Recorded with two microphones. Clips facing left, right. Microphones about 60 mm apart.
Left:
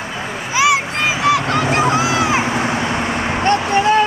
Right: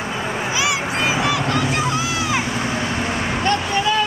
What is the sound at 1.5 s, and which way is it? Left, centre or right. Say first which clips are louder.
Vehicle: left 5 dB; left.